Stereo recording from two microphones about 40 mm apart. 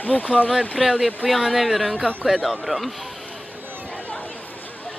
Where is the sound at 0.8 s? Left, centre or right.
Centre.